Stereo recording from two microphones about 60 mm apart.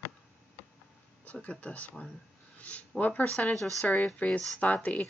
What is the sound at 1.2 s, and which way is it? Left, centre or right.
Speech, left.